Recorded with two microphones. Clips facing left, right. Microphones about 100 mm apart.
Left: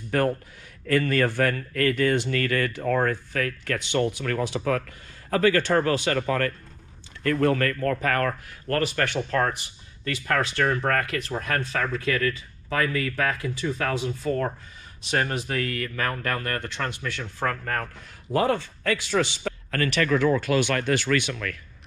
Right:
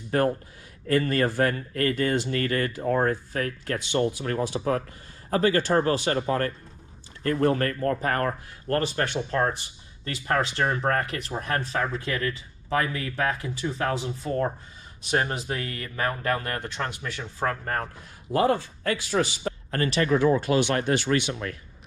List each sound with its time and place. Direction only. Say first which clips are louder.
0.8 s speech: left 1 dB; 20° right (ahead or behind)